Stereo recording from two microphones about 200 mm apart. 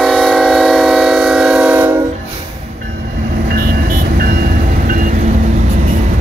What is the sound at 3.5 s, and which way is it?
Vehicle, 50° right (ahead or behind).